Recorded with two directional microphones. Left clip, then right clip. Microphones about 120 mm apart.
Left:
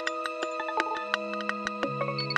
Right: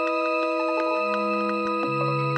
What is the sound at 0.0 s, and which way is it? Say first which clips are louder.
Music: right 8 dB; centre (ahead or behind).